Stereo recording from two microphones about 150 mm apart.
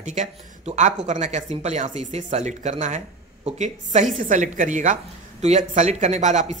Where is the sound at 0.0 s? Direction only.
55° right (ahead or behind).